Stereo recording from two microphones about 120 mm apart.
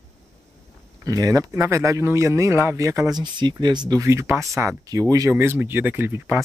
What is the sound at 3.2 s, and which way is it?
Speech, 35° right (ahead or behind).